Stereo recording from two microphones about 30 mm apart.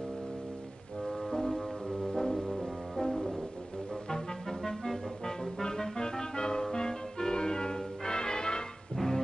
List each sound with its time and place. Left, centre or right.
1.0 s music: centre
3.9 s music: left